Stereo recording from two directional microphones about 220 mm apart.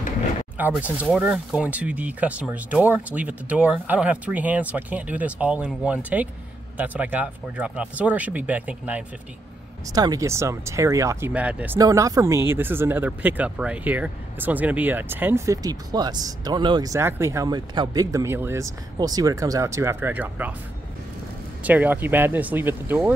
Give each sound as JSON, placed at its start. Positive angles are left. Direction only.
{"t": 0.6, "sound": "speech", "side_deg": -10}
{"t": 21.6, "sound": "speech", "side_deg": -5}